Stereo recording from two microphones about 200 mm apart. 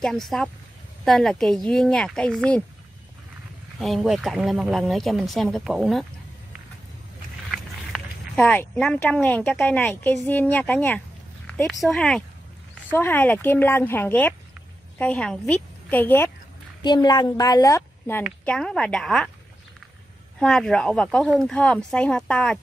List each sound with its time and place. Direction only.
0.0 s speech: centre (ahead or behind)
3.8 s speech: centre (ahead or behind)
7.5 s speech: 5° left (ahead or behind)
11.4 s a sound: 5° left (ahead or behind)
11.8 s a woman's voice: centre (ahead or behind)
16.8 s a woman's voice: 20° left (ahead or behind); by 19.3 s centre (ahead or behind)
20.3 s speech: 5° left (ahead or behind)